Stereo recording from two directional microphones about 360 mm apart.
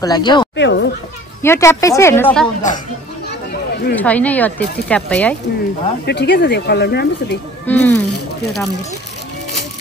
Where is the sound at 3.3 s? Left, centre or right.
Left.